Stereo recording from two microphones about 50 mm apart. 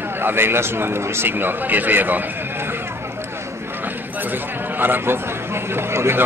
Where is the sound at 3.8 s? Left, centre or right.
Right.